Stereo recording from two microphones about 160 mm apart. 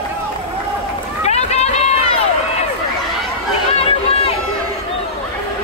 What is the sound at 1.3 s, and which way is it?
Run, 45° left (ahead or behind).